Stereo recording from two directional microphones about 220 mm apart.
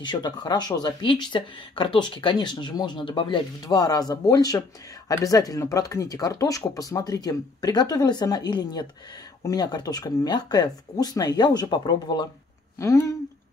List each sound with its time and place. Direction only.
0.0 s speech: 20° left (ahead or behind)